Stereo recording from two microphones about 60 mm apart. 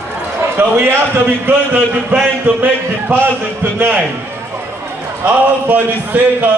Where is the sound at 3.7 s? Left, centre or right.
Right.